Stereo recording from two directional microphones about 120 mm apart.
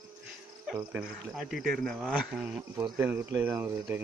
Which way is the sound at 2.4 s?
15° right (ahead or behind).